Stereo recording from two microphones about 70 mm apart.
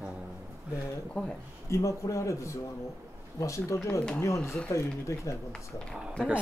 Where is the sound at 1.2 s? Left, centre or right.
Centre.